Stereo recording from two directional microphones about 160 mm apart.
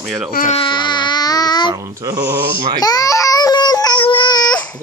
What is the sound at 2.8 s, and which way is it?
Baby cry, 25° left (ahead or behind).